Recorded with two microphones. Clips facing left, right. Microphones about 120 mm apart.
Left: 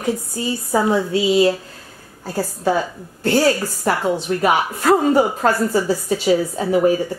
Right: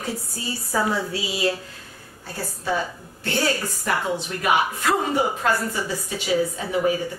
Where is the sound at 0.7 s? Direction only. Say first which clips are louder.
Left 6 dB; 25° left (ahead or behind).